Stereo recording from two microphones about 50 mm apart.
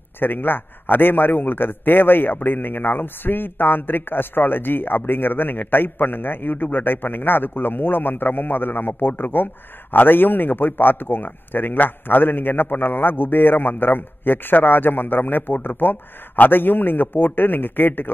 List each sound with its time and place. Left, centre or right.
0.2 s a man's voice: left